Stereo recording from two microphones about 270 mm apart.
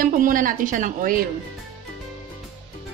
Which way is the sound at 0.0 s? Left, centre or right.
Right.